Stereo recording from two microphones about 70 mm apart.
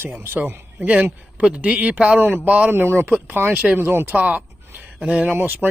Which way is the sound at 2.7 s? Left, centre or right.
Right.